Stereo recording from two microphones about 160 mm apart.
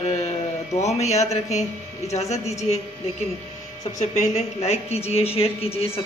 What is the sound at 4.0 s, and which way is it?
Speech, 45° left (ahead or behind).